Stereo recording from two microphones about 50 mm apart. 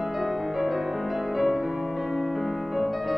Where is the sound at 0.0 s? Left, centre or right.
Centre.